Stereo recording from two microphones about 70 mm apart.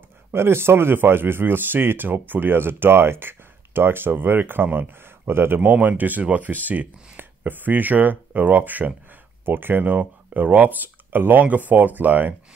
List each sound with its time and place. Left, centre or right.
0.3 s speech: right
5.6 s speech: right